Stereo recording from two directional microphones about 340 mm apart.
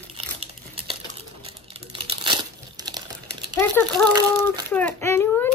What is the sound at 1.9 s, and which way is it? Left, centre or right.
Crumpling, centre.